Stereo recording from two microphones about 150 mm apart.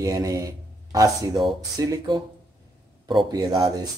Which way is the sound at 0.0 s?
20° right (ahead or behind).